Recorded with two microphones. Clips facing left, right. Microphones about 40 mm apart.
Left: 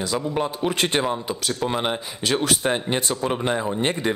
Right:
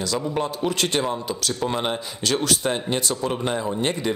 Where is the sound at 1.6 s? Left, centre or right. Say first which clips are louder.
Left 1 dB; centre.